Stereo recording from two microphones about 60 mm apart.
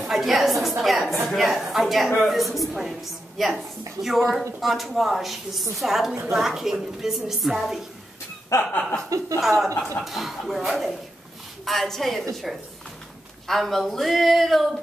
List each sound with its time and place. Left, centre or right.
0.0 s a woman's voice: centre
8.5 s chuckle: left
9.4 s a woman's voice: centre
13.5 s a woman's voice: centre